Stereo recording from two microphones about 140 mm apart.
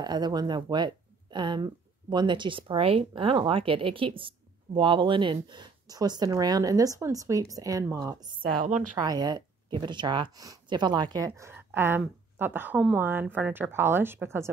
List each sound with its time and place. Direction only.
0.0 s a woman's voice: 30° right (ahead or behind)
8.5 s a woman's voice: 90° right
8.9 s speech: 30° right (ahead or behind)